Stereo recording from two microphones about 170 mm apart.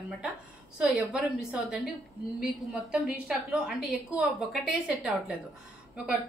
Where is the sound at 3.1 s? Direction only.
5° right (ahead or behind).